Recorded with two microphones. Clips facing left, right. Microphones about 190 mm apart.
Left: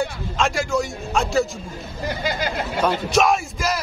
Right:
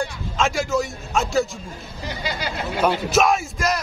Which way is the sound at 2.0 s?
50° left (ahead or behind).